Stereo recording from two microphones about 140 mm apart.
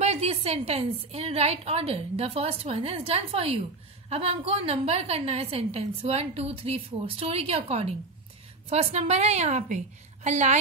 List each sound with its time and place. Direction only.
0.0 s a woman's voice: 50° right (ahead or behind)